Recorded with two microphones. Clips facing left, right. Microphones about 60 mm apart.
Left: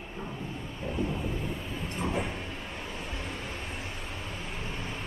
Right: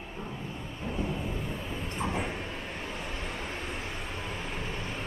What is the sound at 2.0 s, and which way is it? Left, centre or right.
Train, centre.